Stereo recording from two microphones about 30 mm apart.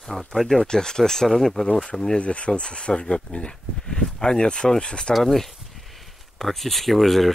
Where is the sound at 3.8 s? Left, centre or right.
Left.